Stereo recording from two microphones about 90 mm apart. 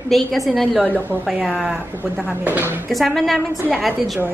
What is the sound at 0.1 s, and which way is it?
A woman's voice, centre (ahead or behind).